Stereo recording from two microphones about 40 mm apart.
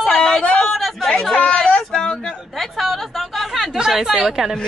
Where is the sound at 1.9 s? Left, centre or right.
Left.